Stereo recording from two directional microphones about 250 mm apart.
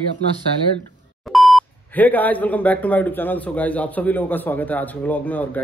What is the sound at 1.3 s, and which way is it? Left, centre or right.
Speech, centre.